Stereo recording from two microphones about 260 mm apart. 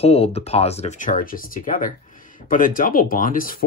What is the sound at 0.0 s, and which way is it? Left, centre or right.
Speech, left.